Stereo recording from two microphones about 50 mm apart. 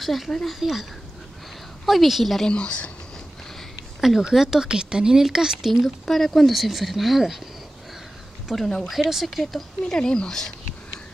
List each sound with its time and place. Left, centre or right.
0.0 s speech: centre
1.9 s speech: centre
2.4 s speech: centre
4.2 s speech: centre
6.0 s speech: centre
8.5 s speech: centre
9.9 s speech: centre